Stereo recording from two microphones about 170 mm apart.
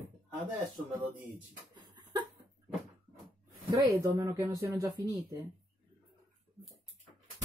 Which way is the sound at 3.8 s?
20° right (ahead or behind).